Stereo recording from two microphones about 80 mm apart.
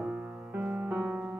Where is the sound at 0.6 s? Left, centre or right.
Centre.